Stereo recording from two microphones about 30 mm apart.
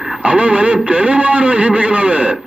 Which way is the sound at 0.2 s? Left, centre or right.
Right.